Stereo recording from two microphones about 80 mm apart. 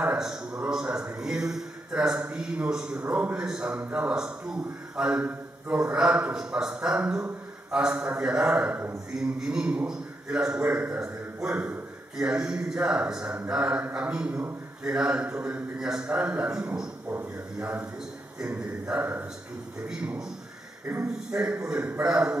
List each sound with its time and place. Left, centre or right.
0.5 s a man's voice: centre
1.2 s a man's voice: centre
3.3 s a man's voice: centre